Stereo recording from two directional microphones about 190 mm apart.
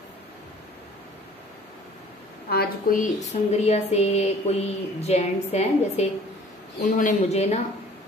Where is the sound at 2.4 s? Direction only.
50° left (ahead or behind); by 7.5 s 35° left (ahead or behind).